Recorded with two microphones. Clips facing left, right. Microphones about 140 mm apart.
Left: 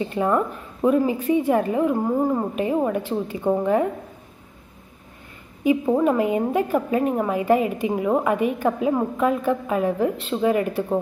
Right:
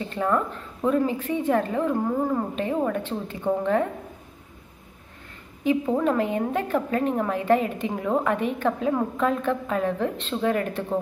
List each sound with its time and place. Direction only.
0.0 s a woman's voice: 15° left (ahead or behind)
5.6 s a woman's voice: 10° left (ahead or behind)